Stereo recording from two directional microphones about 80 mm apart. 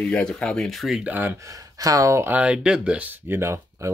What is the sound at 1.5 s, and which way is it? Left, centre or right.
Speech, right.